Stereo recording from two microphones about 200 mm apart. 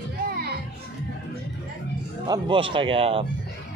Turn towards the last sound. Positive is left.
turn(degrees=-25)  # may be behind; listen again after turning